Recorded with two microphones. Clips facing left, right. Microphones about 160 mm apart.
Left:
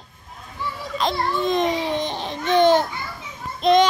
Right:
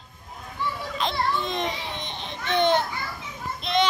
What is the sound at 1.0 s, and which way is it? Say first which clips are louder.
Babbling: left 4 dB; 40° left (ahead or behind).